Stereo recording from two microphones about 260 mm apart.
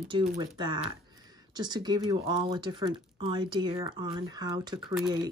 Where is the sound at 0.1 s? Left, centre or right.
Centre.